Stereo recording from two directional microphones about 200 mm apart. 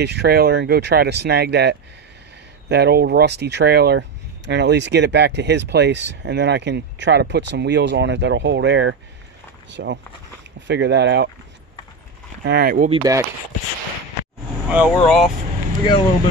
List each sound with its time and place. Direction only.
0.0 s speech: 55° right (ahead or behind)
12.4 s speech: 50° right (ahead or behind)
12.9 s speech: 20° right (ahead or behind)
14.7 s speech: 5° right (ahead or behind)